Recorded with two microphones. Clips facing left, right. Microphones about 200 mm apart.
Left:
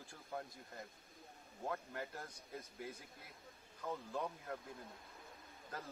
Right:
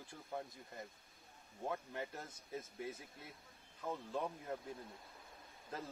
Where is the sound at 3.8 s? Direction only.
10° right (ahead or behind).